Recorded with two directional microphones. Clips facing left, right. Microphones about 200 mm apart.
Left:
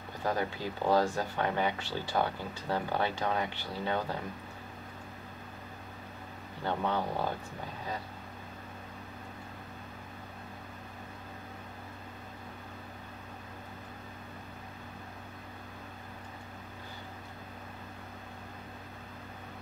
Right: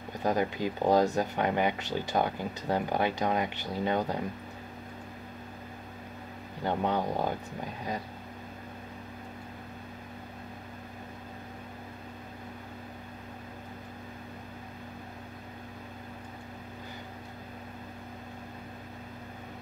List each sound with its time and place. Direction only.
0.2 s speech: 15° right (ahead or behind)
6.6 s speech: 15° right (ahead or behind)